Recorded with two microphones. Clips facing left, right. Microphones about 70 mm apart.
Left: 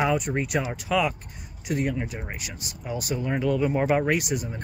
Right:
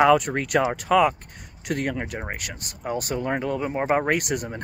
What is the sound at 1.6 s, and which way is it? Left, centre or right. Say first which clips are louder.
Speech: even; right.